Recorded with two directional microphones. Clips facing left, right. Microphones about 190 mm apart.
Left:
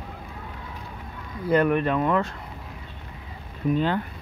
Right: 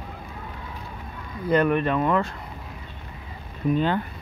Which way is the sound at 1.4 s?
5° left (ahead or behind).